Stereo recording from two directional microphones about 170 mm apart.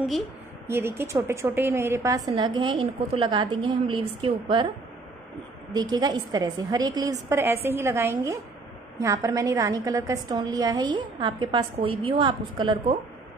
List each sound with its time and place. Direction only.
0.7 s a woman's voice: 15° right (ahead or behind); by 4.6 s 30° right (ahead or behind)
5.7 s a woman's voice: 25° right (ahead or behind)